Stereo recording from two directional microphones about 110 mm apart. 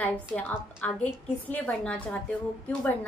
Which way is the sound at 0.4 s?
15° left (ahead or behind).